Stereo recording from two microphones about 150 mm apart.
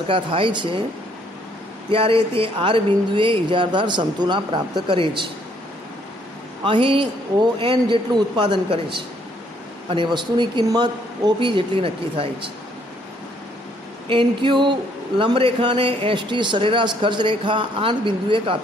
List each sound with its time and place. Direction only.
0.1 s a man's voice: 35° right (ahead or behind)
1.9 s a man's voice: 35° right (ahead or behind)
6.6 s a man's voice: 35° right (ahead or behind)
9.8 s a man's voice: 35° right (ahead or behind)
14.0 s a man's voice: 35° right (ahead or behind)